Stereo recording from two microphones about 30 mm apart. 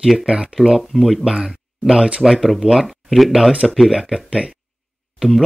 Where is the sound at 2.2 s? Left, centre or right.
Centre.